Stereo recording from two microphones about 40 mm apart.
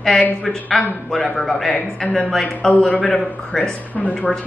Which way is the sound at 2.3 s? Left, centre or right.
Centre.